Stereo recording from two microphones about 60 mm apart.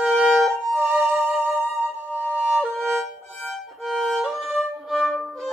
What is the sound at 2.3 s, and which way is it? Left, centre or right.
Music, right.